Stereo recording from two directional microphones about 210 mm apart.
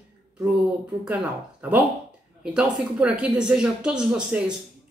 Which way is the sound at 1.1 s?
5° right (ahead or behind).